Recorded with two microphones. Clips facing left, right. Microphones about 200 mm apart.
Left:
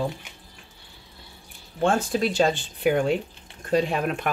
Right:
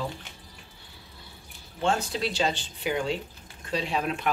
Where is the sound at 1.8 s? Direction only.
50° left (ahead or behind).